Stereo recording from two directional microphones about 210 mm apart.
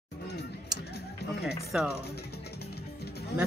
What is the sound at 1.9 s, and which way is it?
Music, 50° left (ahead or behind).